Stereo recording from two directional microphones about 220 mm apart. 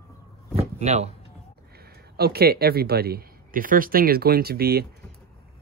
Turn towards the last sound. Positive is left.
turn(degrees=-45)  # may be behind; listen again after turning